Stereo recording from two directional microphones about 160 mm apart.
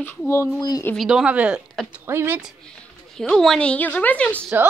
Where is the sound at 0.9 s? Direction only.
Centre (ahead or behind).